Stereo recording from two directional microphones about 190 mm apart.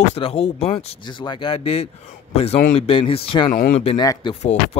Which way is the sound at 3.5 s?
45° left (ahead or behind).